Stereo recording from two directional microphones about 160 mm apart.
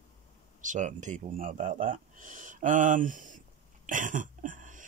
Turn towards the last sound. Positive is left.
turn(degrees=-55)  # may be behind; listen again after turning